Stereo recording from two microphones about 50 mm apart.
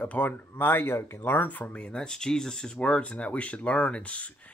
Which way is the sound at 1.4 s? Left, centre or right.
Left.